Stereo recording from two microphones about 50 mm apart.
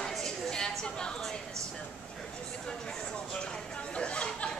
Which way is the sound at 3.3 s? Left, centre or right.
Centre.